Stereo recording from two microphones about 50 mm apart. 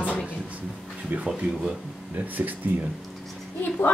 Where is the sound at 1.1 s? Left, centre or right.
Right.